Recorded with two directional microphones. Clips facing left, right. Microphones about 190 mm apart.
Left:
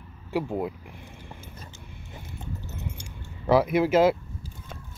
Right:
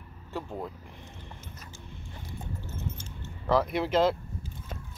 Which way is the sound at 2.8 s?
10° left (ahead or behind).